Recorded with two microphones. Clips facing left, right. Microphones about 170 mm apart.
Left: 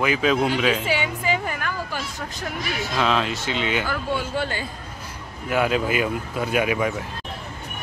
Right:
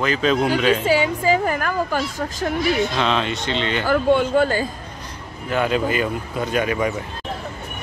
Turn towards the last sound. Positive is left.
turn(degrees=5)  # may be behind; listen again after turning